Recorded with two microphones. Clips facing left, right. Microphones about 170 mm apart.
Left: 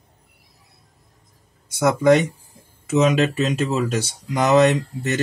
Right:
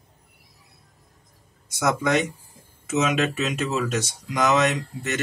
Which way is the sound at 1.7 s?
30° left (ahead or behind).